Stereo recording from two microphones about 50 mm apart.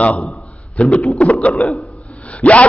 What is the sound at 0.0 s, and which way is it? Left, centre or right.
A man's voice, left.